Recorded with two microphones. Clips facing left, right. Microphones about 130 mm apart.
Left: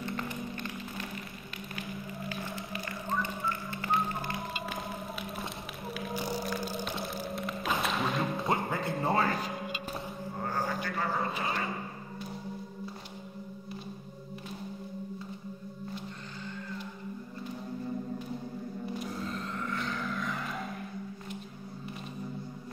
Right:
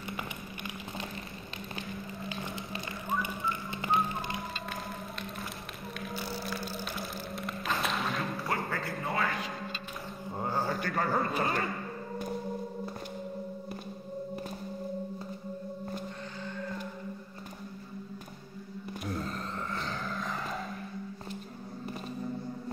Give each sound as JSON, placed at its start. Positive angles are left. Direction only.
{"t": 1.8, "sound": "a sound", "side_deg": -20}
{"t": 3.1, "sound": "music", "side_deg": -15}
{"t": 6.1, "sound": "music", "side_deg": 15}
{"t": 7.3, "sound": "music", "side_deg": 0}
{"t": 8.4, "sound": "music", "side_deg": 20}
{"t": 9.0, "sound": "music", "side_deg": 30}
{"t": 10.7, "sound": "a sound", "side_deg": -45}
{"t": 19.7, "sound": "vehicle", "side_deg": -30}